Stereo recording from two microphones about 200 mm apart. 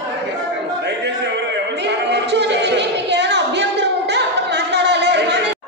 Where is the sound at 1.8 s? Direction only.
60° right (ahead or behind).